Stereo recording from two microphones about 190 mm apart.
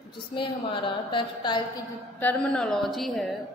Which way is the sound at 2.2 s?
5° left (ahead or behind).